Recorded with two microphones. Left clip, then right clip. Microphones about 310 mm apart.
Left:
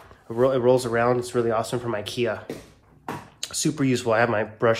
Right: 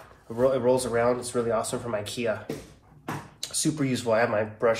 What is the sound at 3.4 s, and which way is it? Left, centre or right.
Speech, left.